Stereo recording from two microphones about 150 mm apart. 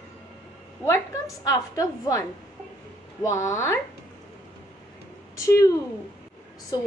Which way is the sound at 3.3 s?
20° left (ahead or behind).